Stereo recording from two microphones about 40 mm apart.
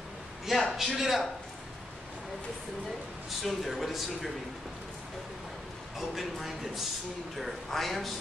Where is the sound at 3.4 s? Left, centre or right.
Centre.